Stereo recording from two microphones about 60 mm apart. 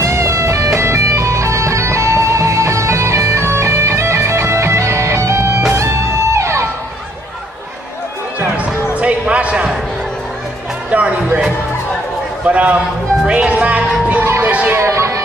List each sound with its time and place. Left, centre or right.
0.0 s music: right
8.9 s a sound: right
10.9 s music: right
12.4 s a sound: right
13.3 s music: right
14.8 s music: right